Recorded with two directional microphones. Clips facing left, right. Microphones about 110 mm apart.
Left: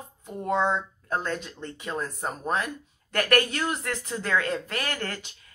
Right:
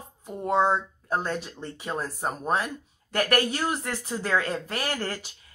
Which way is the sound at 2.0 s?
15° right (ahead or behind).